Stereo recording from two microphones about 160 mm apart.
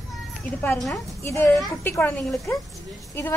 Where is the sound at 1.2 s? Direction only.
15° left (ahead or behind).